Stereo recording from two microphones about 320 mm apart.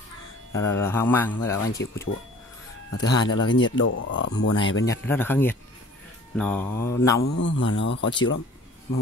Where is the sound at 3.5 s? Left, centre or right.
Left.